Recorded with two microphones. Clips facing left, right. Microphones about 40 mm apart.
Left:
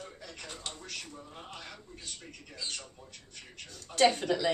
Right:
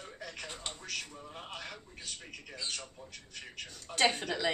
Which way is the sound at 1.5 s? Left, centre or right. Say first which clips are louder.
Right 3 dB; right.